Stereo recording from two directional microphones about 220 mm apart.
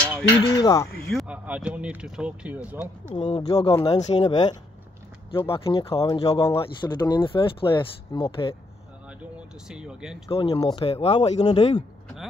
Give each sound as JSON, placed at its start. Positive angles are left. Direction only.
{"t": 0.4, "sound": "speech", "side_deg": 20}
{"t": 1.1, "sound": "speech", "side_deg": -5}
{"t": 3.1, "sound": "speech", "side_deg": 30}
{"t": 9.7, "sound": "speech", "side_deg": -5}
{"t": 10.3, "sound": "speech", "side_deg": 25}